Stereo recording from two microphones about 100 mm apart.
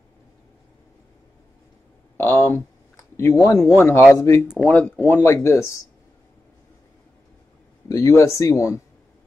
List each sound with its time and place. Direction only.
2.1 s speech: 25° left (ahead or behind)
4.6 s speech: 15° left (ahead or behind)
7.9 s speech: 30° left (ahead or behind)